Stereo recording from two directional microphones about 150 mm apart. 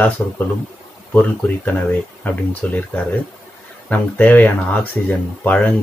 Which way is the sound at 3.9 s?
10° left (ahead or behind).